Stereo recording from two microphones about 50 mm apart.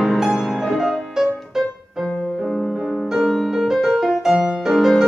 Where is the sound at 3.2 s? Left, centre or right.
Centre.